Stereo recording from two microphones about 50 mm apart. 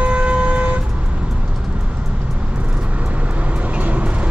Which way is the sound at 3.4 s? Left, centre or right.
Right.